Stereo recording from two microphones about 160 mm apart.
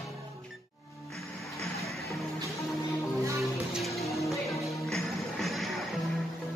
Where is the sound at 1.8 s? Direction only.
Centre (ahead or behind).